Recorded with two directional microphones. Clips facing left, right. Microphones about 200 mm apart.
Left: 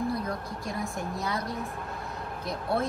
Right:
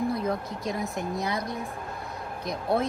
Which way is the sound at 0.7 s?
20° right (ahead or behind).